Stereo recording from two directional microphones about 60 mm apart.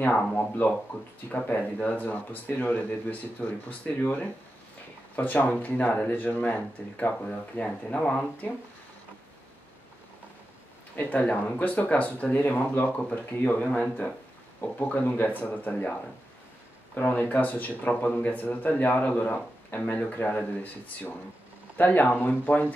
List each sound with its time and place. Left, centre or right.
0.0 s speech: left
1.5 s speech: left
11.0 s speech: left
13.6 s speech: centre
14.6 s speech: left